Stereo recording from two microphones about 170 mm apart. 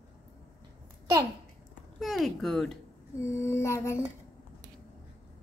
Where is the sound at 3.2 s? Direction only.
15° left (ahead or behind).